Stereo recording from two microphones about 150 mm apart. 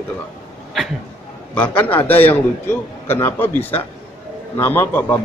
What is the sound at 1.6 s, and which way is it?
A man's voice, 10° left (ahead or behind).